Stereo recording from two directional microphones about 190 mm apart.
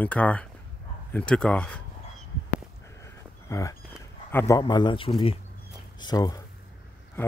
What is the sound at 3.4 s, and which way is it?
A man's voice, 15° left (ahead or behind).